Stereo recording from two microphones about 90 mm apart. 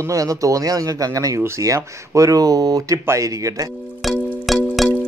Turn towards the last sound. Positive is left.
turn(degrees=0)  # may be behind; listen again after turning